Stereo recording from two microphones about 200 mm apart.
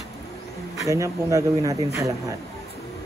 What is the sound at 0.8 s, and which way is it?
Speech, 15° right (ahead or behind).